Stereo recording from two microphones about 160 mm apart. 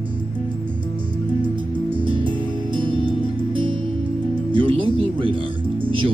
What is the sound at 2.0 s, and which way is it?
Music, 30° right (ahead or behind).